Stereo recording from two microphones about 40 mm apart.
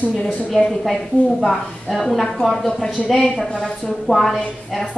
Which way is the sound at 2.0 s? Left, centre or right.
Centre.